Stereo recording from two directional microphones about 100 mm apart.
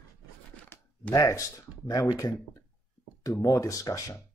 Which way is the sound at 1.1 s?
35° left (ahead or behind).